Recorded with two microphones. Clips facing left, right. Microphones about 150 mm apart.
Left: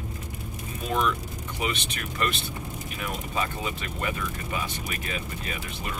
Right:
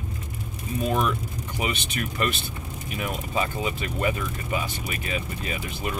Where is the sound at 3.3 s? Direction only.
10° right (ahead or behind).